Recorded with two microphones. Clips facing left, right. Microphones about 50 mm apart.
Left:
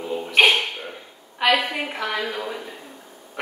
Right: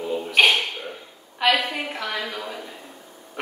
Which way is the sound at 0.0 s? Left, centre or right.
Centre.